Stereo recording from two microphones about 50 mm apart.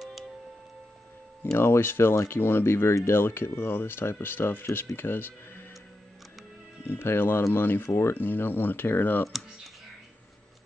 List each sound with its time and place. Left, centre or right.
1.6 s speech: left
3.1 s speech: left
6.9 s speech: left